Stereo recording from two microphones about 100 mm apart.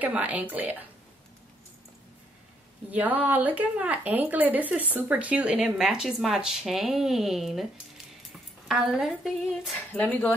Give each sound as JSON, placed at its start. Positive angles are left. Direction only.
{"t": 0.0, "sound": "speech", "side_deg": -15}
{"t": 2.9, "sound": "speech", "side_deg": -15}
{"t": 8.6, "sound": "speech", "side_deg": -5}
{"t": 9.8, "sound": "speech", "side_deg": 15}